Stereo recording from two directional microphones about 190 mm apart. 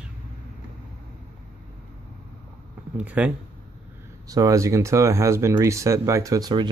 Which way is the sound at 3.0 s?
5° right (ahead or behind).